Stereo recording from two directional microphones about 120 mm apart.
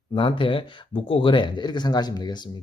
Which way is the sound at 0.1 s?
45° left (ahead or behind).